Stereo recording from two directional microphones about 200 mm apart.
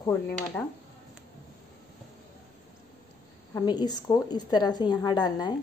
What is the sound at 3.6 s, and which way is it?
A woman's voice, 20° left (ahead or behind).